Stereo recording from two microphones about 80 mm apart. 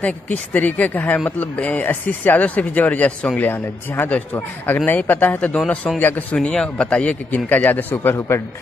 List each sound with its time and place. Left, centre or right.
0.0 s speech: centre
6.3 s speech: centre; by 8.4 s left